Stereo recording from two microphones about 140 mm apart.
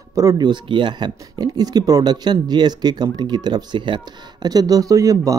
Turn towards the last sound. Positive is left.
turn(degrees=-25)  # may be behind; listen again after turning